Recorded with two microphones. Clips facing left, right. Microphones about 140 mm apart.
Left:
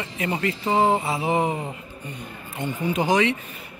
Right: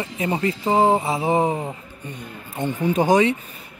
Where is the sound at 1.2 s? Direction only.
30° right (ahead or behind).